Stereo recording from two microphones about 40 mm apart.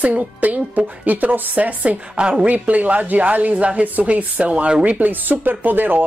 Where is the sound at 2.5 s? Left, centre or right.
Right.